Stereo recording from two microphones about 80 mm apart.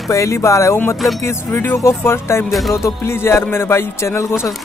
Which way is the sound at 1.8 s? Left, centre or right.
Left.